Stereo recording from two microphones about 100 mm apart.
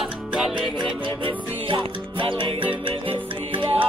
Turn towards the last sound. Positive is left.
turn(degrees=-60)  # may be behind; listen again after turning